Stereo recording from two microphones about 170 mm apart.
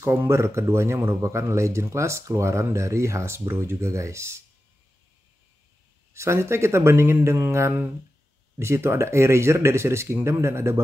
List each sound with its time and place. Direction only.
0.0 s a man's voice: 15° right (ahead or behind)
6.1 s a man's voice: 15° right (ahead or behind)